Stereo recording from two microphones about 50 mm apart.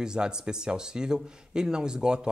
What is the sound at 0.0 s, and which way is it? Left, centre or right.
Speech, centre.